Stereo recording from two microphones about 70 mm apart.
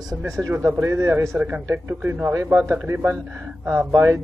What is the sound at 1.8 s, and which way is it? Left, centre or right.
Speech, right.